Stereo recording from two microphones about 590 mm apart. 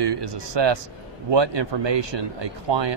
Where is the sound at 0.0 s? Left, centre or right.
Right.